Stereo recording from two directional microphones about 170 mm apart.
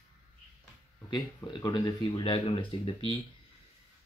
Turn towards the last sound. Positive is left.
turn(degrees=35)  # may be behind; listen again after turning